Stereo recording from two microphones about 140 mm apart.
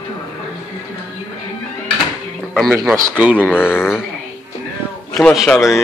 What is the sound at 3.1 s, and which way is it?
Speech, 10° right (ahead or behind).